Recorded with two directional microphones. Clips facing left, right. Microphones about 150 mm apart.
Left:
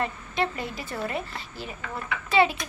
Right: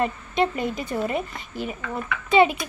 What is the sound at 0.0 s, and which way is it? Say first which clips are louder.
Speech: right 5 dB; 20° right (ahead or behind).